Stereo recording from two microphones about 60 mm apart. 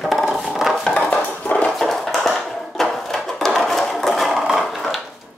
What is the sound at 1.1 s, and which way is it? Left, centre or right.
Dishes, left.